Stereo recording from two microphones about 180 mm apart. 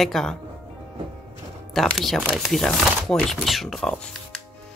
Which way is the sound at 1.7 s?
Centre (ahead or behind).